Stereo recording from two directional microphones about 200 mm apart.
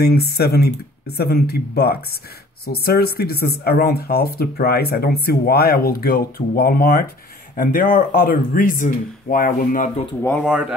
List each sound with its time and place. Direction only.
0.0 s speech: 50° left (ahead or behind)
10.2 s speech: 5° left (ahead or behind)